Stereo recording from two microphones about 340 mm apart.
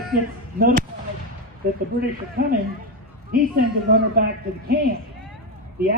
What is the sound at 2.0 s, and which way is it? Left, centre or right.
Speech, right.